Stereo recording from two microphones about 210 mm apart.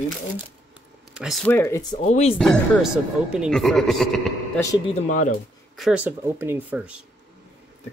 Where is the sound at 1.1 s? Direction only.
Centre (ahead or behind).